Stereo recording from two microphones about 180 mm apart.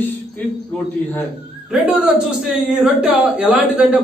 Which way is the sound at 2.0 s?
Centre (ahead or behind).